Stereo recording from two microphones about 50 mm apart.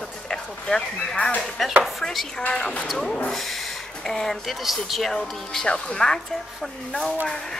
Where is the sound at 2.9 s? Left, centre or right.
Centre.